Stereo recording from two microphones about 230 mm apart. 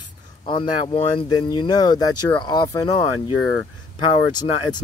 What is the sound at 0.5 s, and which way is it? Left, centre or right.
Speech, left.